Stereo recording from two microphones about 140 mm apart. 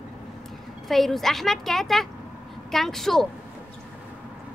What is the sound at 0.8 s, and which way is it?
A woman's voice, centre (ahead or behind).